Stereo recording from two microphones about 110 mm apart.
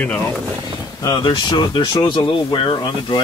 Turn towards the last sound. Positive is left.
turn(degrees=45)  # may be behind; listen again after turning